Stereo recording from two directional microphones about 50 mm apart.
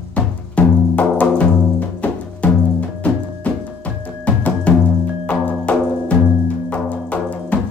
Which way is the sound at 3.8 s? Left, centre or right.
Left.